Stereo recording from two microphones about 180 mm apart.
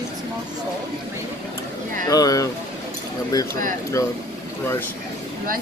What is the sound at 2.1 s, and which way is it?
Speech, 20° left (ahead or behind).